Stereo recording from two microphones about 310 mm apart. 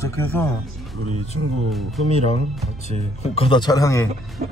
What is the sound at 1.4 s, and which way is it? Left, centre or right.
Speech, right.